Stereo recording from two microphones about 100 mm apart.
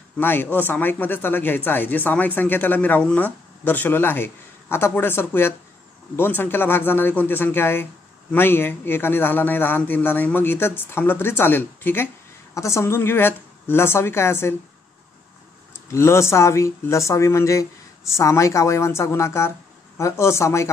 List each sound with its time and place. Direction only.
0.2 s speech: 20° left (ahead or behind)
15.9 s speech: 25° left (ahead or behind)